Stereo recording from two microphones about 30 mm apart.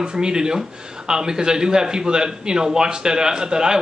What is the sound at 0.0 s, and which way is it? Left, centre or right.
Speech, right.